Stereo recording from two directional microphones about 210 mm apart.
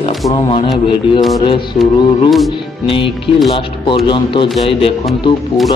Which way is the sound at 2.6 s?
25° left (ahead or behind).